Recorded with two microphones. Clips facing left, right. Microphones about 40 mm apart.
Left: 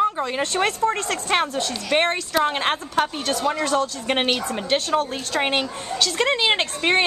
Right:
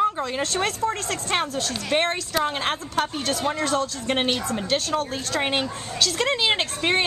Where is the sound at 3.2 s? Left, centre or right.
Centre.